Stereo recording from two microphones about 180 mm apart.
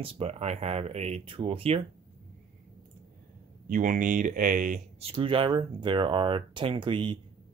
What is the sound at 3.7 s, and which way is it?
Speech, 45° right (ahead or behind).